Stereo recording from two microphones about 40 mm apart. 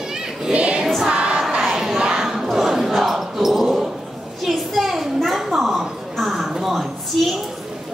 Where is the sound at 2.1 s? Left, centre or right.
Centre.